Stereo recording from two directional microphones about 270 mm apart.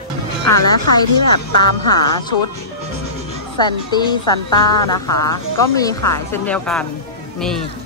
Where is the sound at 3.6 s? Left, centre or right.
Centre.